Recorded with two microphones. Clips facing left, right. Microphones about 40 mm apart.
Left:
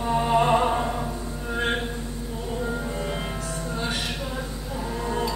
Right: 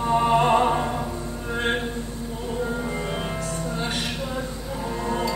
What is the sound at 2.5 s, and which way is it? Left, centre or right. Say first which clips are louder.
Music: right 2 dB; centre.